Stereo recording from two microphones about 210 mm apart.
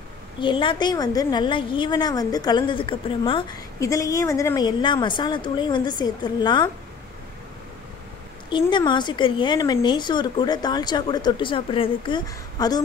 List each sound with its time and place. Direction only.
0.4 s a woman's voice: 25° left (ahead or behind)
8.5 s a woman's voice: 20° left (ahead or behind)